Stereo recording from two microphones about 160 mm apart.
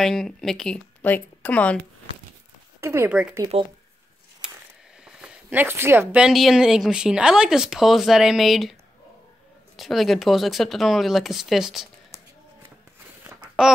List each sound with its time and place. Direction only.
0.0 s speech: centre (ahead or behind)
2.8 s speech: 15° right (ahead or behind)
3.5 s speech: 40° right (ahead or behind)
4.4 s a sound: 5° right (ahead or behind)
6.2 s speech: centre (ahead or behind)
9.8 s speech: centre (ahead or behind)
13.3 s babbling: 5° right (ahead or behind)